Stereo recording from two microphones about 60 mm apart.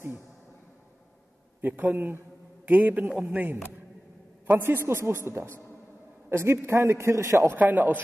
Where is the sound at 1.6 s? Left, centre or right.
Right.